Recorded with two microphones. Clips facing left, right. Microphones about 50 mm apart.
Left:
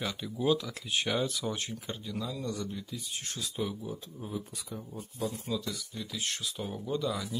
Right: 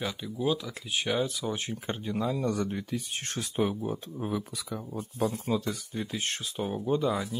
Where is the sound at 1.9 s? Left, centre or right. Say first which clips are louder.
Right 10 dB; right.